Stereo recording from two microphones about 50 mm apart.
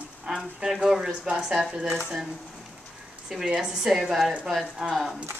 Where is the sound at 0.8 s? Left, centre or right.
Centre.